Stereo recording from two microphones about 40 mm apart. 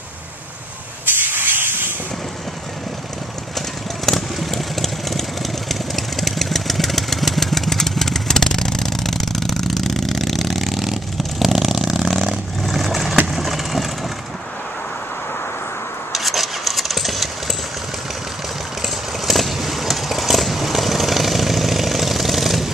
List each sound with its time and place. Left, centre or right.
1.2 s hiss: right
3.5 s vehicle: centre
16.1 s engine starting: centre
18.8 s vehicle: centre